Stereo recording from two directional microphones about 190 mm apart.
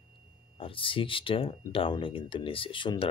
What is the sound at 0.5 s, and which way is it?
Speech, 30° left (ahead or behind).